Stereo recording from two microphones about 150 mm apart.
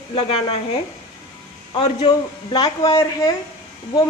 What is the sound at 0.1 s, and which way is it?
Speech, 40° left (ahead or behind).